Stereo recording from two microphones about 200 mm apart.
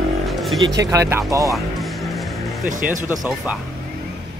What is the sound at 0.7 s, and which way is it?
Speech, 15° right (ahead or behind).